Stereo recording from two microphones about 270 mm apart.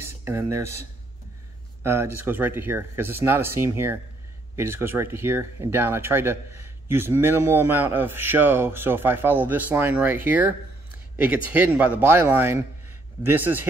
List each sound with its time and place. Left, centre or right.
0.0 s a sound: centre
1.8 s a man's voice: centre
11.5 s a man's voice: centre